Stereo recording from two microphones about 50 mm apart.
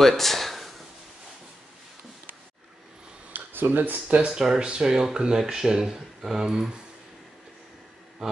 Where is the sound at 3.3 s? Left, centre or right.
Right.